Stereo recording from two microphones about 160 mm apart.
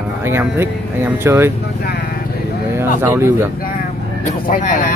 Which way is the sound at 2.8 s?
15° right (ahead or behind).